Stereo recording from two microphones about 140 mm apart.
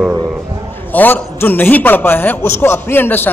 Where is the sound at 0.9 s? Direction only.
15° left (ahead or behind).